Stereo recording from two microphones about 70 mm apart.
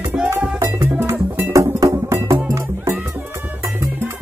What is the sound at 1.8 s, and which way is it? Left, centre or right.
Music, right.